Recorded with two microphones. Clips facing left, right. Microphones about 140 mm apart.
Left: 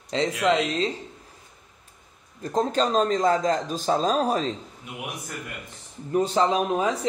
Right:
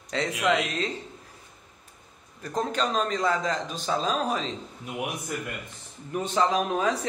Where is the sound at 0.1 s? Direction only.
35° left (ahead or behind).